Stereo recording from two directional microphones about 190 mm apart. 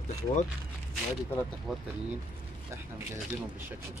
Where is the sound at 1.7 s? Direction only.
Centre (ahead or behind).